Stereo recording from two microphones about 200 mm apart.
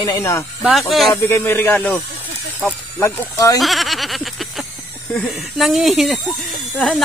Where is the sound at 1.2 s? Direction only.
15° left (ahead or behind).